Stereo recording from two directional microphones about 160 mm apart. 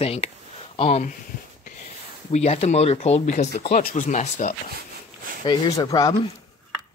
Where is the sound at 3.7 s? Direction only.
55° left (ahead or behind).